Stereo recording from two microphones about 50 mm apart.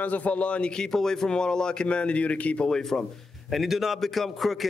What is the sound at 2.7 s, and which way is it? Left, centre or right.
Speech, centre.